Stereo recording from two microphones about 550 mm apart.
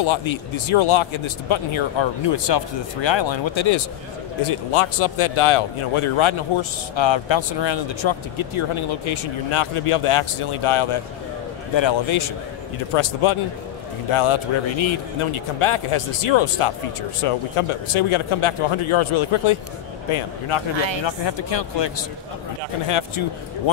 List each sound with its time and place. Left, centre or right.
0.0 s speech: left
4.5 s speech: left
21.0 s speech: left
22.8 s speech: left